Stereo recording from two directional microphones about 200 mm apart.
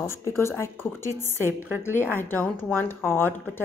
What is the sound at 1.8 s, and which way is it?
A woman's voice, 10° left (ahead or behind).